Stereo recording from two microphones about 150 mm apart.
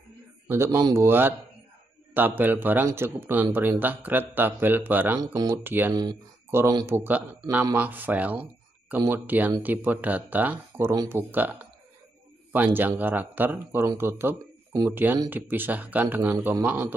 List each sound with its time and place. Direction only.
0.5 s speech: 15° right (ahead or behind)
5.2 s speech: 25° right (ahead or behind)
5.6 s speech: 15° right (ahead or behind)